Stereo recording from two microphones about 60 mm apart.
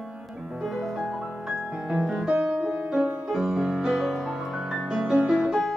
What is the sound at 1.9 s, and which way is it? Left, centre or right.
Piano, centre.